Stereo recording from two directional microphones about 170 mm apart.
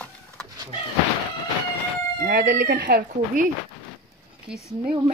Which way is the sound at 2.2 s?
60° right (ahead or behind).